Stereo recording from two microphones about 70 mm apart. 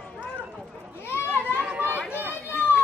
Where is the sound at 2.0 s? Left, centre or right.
Right.